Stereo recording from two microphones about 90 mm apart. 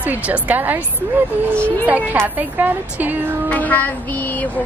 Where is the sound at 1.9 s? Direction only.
20° right (ahead or behind).